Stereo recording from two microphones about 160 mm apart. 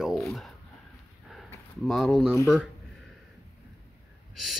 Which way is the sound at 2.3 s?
15° left (ahead or behind).